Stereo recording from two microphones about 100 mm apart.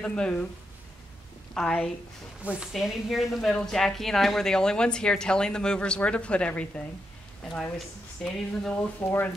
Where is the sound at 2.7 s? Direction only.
5° right (ahead or behind); by 6.7 s 10° left (ahead or behind).